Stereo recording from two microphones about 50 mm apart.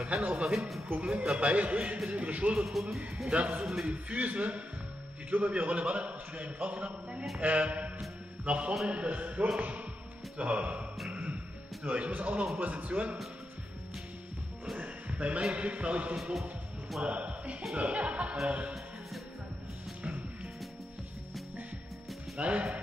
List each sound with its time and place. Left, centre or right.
0.2 s speech: centre
0.6 s speech: centre
1.1 s a man's voice: centre
2.7 s speech: centre
3.3 s a man's voice: right
11.1 s music: right
11.8 s a man's voice: right
14.8 s music: right
15.5 s a man's voice: right
22.4 s a man's voice: right